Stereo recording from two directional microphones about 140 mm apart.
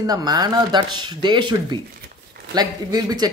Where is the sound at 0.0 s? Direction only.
25° right (ahead or behind).